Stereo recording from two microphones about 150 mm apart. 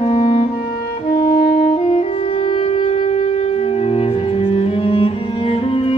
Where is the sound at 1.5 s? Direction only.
50° left (ahead or behind).